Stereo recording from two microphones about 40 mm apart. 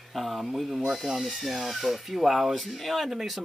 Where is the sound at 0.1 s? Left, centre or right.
Centre.